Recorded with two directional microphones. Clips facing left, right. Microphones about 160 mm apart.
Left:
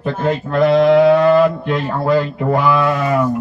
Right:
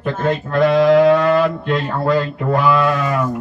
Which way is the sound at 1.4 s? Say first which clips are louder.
Left 3 dB; 10° left (ahead or behind).